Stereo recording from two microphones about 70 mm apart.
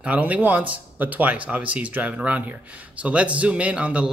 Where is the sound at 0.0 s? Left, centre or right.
Centre.